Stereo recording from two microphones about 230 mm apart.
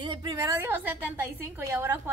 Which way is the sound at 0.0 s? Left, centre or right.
Centre.